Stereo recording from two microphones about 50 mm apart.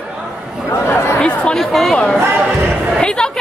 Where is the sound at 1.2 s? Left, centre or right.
Left.